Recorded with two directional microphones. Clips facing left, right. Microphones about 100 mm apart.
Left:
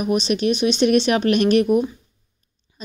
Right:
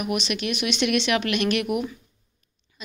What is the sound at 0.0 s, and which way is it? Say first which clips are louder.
A woman's voice: left 7 dB; 35° left (ahead or behind).